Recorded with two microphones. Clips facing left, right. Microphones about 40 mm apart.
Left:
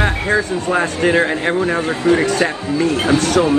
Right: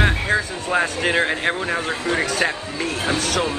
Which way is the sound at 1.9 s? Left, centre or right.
Left.